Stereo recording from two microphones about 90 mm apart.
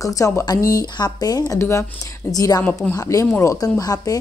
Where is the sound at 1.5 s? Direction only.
35° left (ahead or behind).